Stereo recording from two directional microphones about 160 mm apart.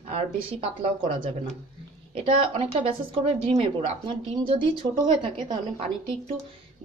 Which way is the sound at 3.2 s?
35° right (ahead or behind).